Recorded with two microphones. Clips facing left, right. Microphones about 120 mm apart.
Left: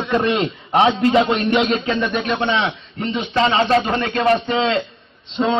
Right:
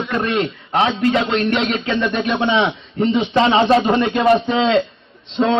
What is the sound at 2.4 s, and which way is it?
A man's voice, 20° right (ahead or behind).